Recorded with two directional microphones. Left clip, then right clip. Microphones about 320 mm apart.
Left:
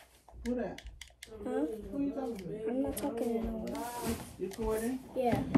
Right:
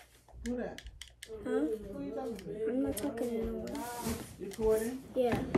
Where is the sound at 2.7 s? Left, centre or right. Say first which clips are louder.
Left 1 dB; centre.